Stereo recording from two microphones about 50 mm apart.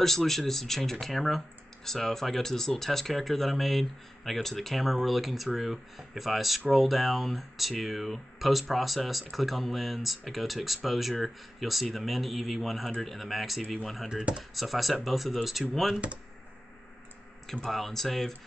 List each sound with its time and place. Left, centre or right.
0.0 s speech: centre
14.0 s speech: centre
14.5 s speech: centre
17.6 s speech: centre